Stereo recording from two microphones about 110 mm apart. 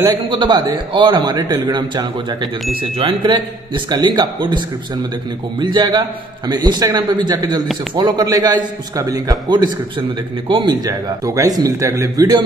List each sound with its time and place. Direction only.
0.0 s a man's voice: 40° right (ahead or behind)
3.0 s a man's voice: 50° right (ahead or behind); by 12.4 s 35° right (ahead or behind)